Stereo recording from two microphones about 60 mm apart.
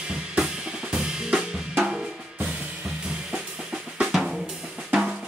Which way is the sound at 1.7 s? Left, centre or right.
Centre.